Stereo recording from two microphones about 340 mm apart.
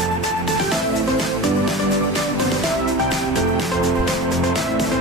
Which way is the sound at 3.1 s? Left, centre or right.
Centre.